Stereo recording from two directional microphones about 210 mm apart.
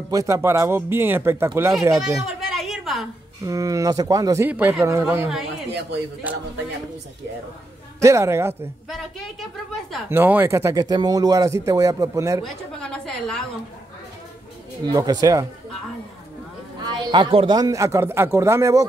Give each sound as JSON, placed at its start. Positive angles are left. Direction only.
{"t": 0.1, "sound": "speech", "side_deg": -15}
{"t": 2.2, "sound": "a sound", "side_deg": 0}
{"t": 3.4, "sound": "speech", "side_deg": -15}
{"t": 8.0, "sound": "speech", "side_deg": -15}
{"t": 8.8, "sound": "a woman's voice", "side_deg": 0}
{"t": 10.0, "sound": "speech", "side_deg": -10}
{"t": 12.4, "sound": "a woman's voice", "side_deg": 5}
{"t": 14.9, "sound": "speech", "side_deg": -20}
{"t": 16.8, "sound": "speech", "side_deg": -20}